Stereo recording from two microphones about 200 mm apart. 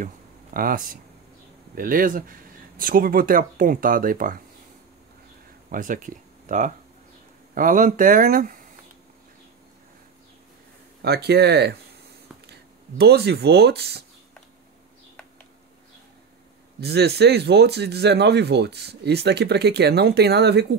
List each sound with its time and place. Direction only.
0.0 s a sound: 45° right (ahead or behind)
1.8 s speech: 45° right (ahead or behind)
5.7 s speech: 40° right (ahead or behind)
11.0 s speech: 55° right (ahead or behind)
16.8 s speech: 55° right (ahead or behind)